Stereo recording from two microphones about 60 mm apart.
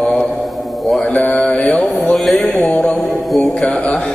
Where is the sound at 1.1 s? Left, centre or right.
Left.